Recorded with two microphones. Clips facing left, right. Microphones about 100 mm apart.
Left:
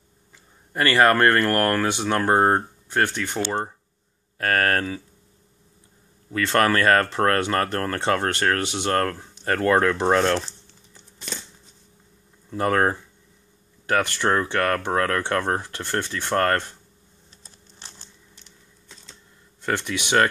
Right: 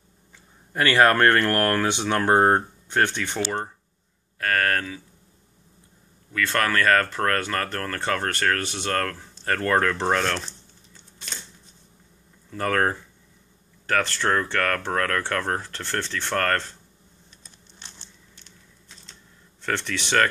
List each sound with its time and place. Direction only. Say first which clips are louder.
0.7 s speech: left 1 dB; centre (ahead or behind)
4.4 s speech: left 2 dB; 35° left (ahead or behind)
6.3 s speech: left 3 dB; 30° left (ahead or behind)
12.4 s speech: left 2 dB; 20° left (ahead or behind)
17.3 s computer keyboard: left 2 dB; 30° left (ahead or behind)
19.6 s speech: left 2 dB; 10° left (ahead or behind)